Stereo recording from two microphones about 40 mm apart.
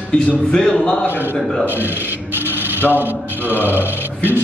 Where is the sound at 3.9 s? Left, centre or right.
Left.